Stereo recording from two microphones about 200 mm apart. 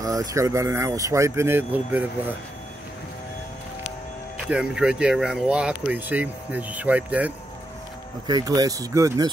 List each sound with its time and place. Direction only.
0.0 s speech: 15° right (ahead or behind)
4.5 s speech: 5° right (ahead or behind)
8.3 s speech: 20° right (ahead or behind)